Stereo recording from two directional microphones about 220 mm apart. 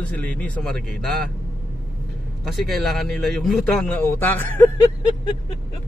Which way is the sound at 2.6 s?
Centre (ahead or behind).